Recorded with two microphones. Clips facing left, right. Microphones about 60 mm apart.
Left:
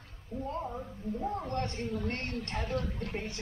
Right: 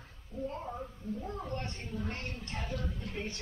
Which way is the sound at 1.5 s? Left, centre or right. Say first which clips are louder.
Left 5 dB; left.